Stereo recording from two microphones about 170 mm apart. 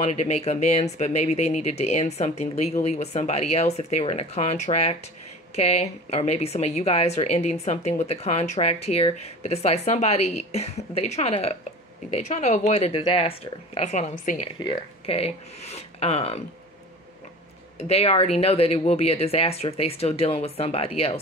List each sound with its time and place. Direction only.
0.0 s speech: 40° left (ahead or behind)
14.6 s speech: 35° left (ahead or behind)
17.7 s speech: 35° left (ahead or behind)